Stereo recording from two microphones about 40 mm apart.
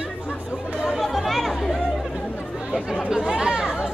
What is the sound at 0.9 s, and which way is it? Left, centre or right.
Chatter, centre.